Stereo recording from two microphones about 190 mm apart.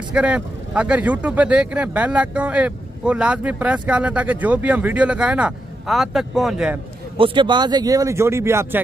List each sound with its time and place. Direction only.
0.1 s speech: 5° right (ahead or behind)
7.2 s speech: 25° right (ahead or behind)